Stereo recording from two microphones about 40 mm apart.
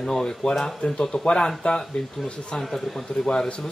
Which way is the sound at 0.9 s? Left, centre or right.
Left.